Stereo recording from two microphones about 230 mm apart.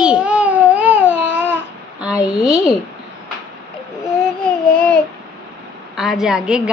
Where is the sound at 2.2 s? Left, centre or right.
Centre.